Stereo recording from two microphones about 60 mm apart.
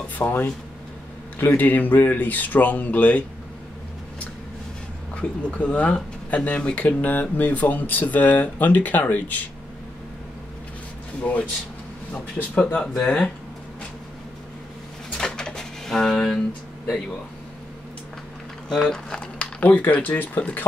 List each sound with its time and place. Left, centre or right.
0.2 s speech: left
1.6 s speech: left
5.1 s speech: left
11.1 s speech: left
15.1 s a sound: centre
18.7 s speech: centre; by 20.6 s left